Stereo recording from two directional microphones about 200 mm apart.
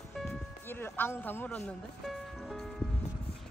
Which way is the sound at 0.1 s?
Centre (ahead or behind).